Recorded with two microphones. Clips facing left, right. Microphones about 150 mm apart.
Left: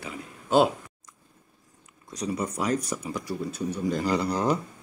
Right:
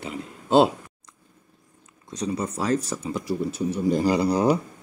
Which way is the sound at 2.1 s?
25° right (ahead or behind).